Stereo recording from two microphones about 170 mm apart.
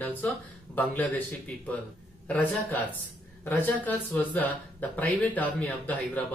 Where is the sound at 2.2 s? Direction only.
10° left (ahead or behind).